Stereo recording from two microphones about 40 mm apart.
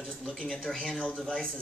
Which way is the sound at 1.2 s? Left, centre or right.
Left.